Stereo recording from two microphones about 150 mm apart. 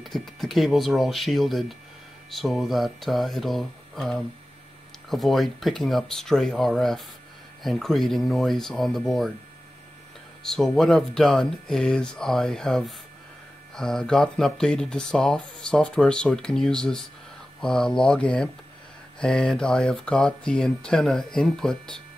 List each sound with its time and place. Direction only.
0.0 s speech: centre (ahead or behind)
10.4 s speech: 5° left (ahead or behind)